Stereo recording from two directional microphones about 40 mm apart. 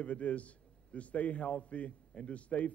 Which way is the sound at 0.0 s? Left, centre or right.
Left.